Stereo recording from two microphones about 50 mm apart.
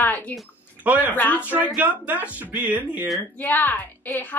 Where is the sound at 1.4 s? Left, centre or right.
Right.